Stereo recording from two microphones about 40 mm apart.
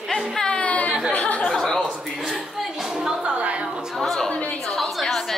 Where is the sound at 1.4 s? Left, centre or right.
Centre.